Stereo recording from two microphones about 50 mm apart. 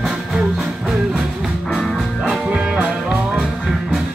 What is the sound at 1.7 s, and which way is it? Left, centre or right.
Music, centre.